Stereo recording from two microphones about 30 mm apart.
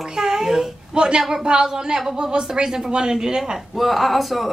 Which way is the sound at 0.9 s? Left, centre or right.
Right.